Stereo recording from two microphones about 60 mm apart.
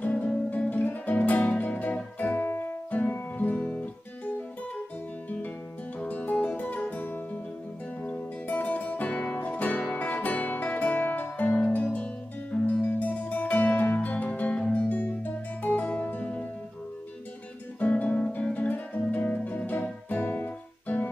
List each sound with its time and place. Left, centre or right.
0.0 s music: left
5.9 s music: left
17.7 s guitar: left
18.4 s music: left